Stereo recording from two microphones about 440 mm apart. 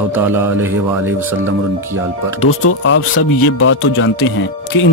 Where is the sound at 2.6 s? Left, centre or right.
Left.